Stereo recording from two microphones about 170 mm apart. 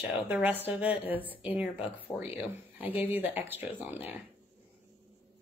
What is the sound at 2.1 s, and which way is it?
Speech, 15° left (ahead or behind).